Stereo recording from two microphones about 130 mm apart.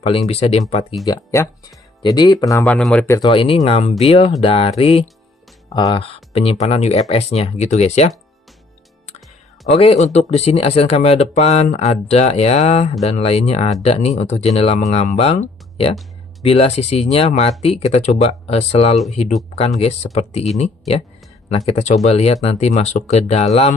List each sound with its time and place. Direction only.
0.3 s speech: 55° left (ahead or behind)
1.0 s speech: 25° left (ahead or behind)
2.8 s speech: 10° left (ahead or behind)
3.2 s speech: 40° left (ahead or behind)
5.7 s speech: 30° left (ahead or behind)
5.9 s speech: 45° left (ahead or behind)
9.7 s speech: 50° left (ahead or behind)
15.9 s music: centre (ahead or behind)
16.4 s speech: 50° left (ahead or behind)